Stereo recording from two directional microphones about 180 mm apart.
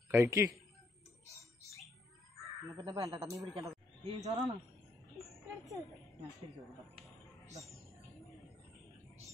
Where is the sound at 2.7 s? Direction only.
20° right (ahead or behind).